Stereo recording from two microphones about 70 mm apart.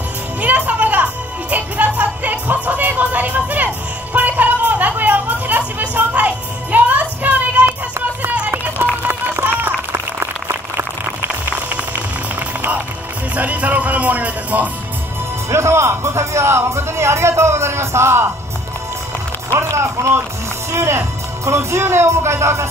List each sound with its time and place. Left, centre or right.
0.4 s music: right
9.0 s a sound: right
13.4 s music: right
15.5 s speech: right
19.5 s run: right
20.7 s speech: right